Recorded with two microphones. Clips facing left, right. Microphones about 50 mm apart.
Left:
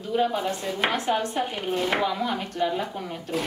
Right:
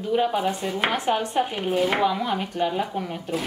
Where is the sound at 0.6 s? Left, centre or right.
Centre.